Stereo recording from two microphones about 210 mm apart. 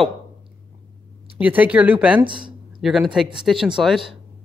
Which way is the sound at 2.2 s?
20° right (ahead or behind).